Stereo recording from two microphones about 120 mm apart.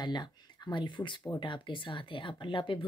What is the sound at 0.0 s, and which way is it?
Speech, 40° left (ahead or behind).